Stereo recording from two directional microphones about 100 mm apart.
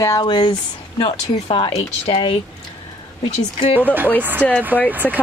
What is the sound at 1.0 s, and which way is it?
Speech, 65° left (ahead or behind).